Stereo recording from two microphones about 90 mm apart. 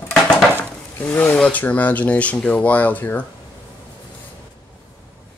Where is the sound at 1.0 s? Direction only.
20° left (ahead or behind).